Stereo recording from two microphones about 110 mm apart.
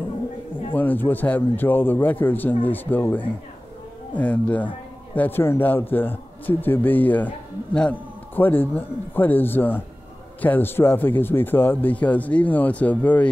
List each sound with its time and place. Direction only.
0.7 s a man's voice: 15° left (ahead or behind)
8.4 s a man's voice: 20° left (ahead or behind)